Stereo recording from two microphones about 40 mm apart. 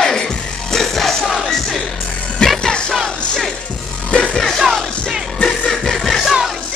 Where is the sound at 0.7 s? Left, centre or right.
Centre.